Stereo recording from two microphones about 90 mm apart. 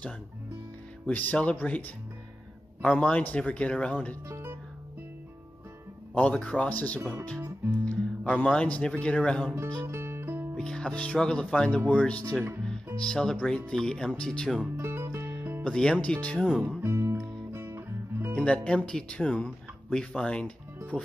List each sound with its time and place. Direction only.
1.0 s speech: 15° left (ahead or behind)
6.1 s speech: 15° left (ahead or behind)
9.8 s music: 30° right (ahead or behind)
10.5 s speech: 10° left (ahead or behind)
14.8 s music: 30° right (ahead or behind)
15.6 s speech: 10° left (ahead or behind)
16.4 s speech: 10° right (ahead or behind)
16.8 s music: 25° right (ahead or behind)
17.5 s guitar: 30° right (ahead or behind)
18.3 s speech: 10° left (ahead or behind)